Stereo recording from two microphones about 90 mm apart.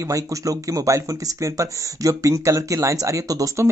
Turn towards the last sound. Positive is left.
turn(degrees=-35)  # may be behind; listen again after turning